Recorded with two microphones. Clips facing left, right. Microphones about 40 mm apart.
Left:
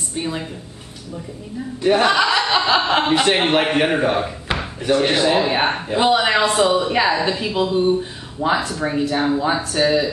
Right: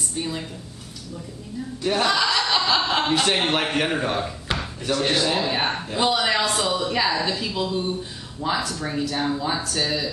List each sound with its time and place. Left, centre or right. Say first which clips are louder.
0.1 s speech: left 6 dB; left
1.8 s speech: left 6 dB; left